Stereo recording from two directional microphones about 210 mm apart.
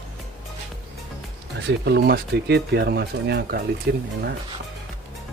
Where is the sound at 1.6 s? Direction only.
55° right (ahead or behind).